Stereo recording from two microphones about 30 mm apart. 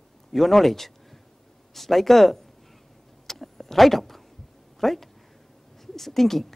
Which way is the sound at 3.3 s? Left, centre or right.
Centre.